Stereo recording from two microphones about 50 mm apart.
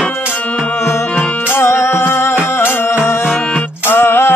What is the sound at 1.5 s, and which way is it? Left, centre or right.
Music, left.